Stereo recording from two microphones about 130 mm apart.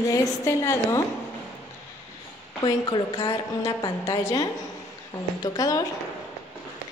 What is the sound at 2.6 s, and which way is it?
A woman's voice, 35° left (ahead or behind).